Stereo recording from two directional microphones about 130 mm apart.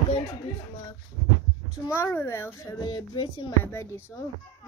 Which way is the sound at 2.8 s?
35° left (ahead or behind).